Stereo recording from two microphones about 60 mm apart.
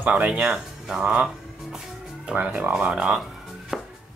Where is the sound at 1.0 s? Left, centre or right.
Centre.